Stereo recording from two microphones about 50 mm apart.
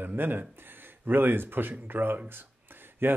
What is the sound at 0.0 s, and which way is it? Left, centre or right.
Speech, right.